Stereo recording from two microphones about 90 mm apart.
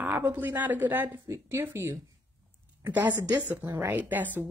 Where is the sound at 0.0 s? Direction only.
25° right (ahead or behind).